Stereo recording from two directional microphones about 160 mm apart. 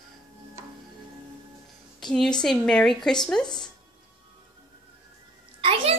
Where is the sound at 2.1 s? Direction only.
5° left (ahead or behind).